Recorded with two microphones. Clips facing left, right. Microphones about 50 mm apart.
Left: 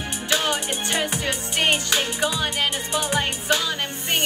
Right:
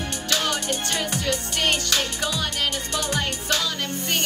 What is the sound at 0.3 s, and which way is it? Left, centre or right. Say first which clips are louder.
Music: left 2 dB; left.